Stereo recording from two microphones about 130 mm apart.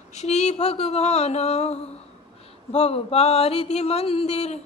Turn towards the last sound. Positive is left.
turn(degrees=55)  # may be behind; listen again after turning